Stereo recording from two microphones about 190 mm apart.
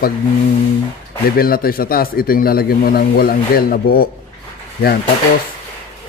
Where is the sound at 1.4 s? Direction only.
50° left (ahead or behind).